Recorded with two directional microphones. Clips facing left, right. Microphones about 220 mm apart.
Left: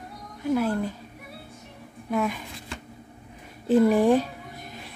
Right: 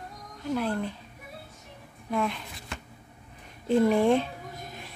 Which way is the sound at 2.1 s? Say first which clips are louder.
Left 3 dB; 5° left (ahead or behind).